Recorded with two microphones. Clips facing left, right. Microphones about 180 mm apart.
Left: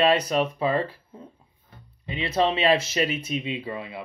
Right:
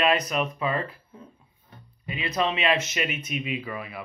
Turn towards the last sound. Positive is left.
turn(degrees=25)  # may be behind; listen again after turning